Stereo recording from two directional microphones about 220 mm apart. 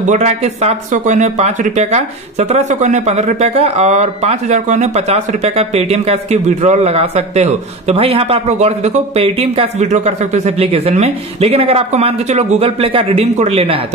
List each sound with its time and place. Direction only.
0.1 s speech: 30° right (ahead or behind)